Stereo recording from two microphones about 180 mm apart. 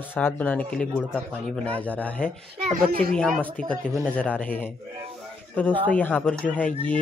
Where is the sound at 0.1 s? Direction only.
10° left (ahead or behind).